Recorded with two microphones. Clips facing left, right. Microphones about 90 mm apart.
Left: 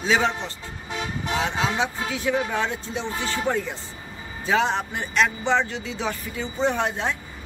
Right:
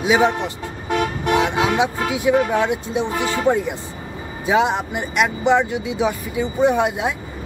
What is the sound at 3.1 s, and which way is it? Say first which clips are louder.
Speech: right 5 dB; 65° right (ahead or behind).